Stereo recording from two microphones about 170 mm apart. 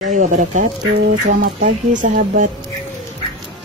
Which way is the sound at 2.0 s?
50° right (ahead or behind).